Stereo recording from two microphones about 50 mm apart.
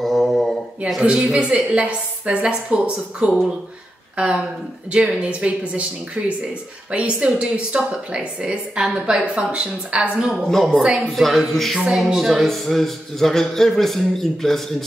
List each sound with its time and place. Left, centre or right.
0.0 s mantra: centre
1.1 s a man's voice: centre; by 10.1 s right
10.3 s a man's voice: centre